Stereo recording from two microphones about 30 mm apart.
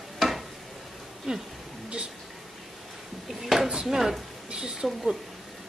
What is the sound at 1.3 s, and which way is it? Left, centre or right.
Speech, centre.